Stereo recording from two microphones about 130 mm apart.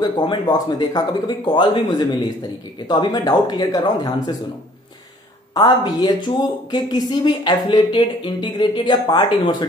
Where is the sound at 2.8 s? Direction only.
35° left (ahead or behind).